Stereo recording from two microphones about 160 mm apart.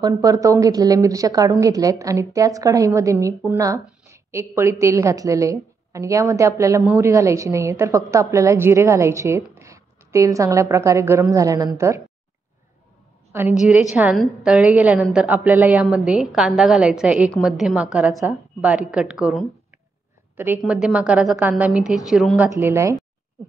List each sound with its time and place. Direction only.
0.0 s a woman's voice: 20° right (ahead or behind)
13.3 s a woman's voice: 15° right (ahead or behind)
22.5 s a woman's voice: 15° right (ahead or behind)